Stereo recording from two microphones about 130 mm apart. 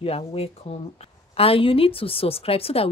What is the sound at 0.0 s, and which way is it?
A woman's voice, 50° left (ahead or behind).